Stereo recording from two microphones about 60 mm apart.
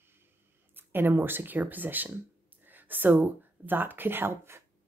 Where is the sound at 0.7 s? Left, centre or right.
Right.